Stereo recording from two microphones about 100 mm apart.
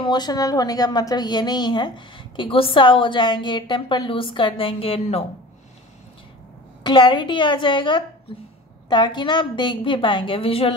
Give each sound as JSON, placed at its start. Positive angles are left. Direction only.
{"t": 0.0, "sound": "a woman's voice", "side_deg": 45}
{"t": 6.8, "sound": "a woman's voice", "side_deg": 50}